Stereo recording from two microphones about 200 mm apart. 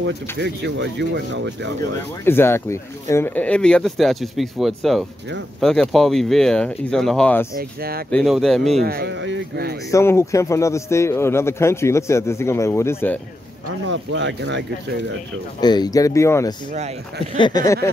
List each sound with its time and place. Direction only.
0.4 s speech: 60° right (ahead or behind)
2.2 s speech: 10° left (ahead or behind)
7.5 s speech: 50° right (ahead or behind)
8.1 s speech: centre (ahead or behind)
8.8 s speech: 50° right (ahead or behind)
9.8 s speech: 15° left (ahead or behind)
13.8 s speech: 65° right (ahead or behind)
15.6 s speech: 20° left (ahead or behind)
17.3 s a sound: 20° left (ahead or behind)